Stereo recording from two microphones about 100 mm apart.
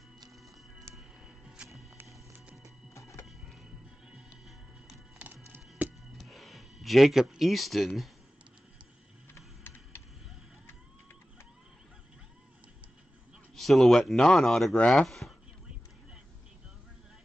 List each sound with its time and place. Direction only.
0.9 s music: 5° right (ahead or behind)
2.9 s music: 30° left (ahead or behind)
3.3 s music: centre (ahead or behind)
6.1 s a sound: centre (ahead or behind)
9.3 s a sound: 20° left (ahead or behind)
13.6 s speech: centre (ahead or behind)